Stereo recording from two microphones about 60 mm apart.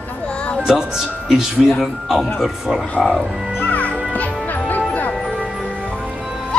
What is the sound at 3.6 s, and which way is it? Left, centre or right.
Music, left.